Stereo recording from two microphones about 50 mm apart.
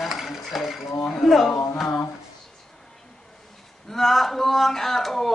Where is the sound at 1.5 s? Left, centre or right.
Left.